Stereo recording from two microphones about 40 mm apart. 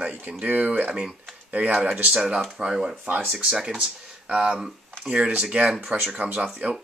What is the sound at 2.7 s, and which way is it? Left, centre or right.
Speech, centre.